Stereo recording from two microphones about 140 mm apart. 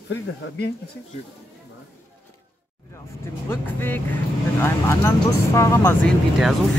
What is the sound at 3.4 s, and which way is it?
Speech, 15° left (ahead or behind).